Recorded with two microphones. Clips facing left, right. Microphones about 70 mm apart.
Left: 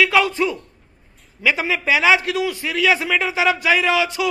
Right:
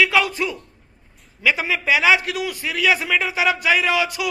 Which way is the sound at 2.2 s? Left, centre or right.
Centre.